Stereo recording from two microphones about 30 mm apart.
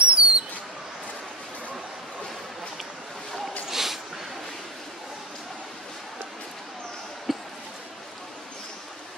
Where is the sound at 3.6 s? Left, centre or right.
Centre.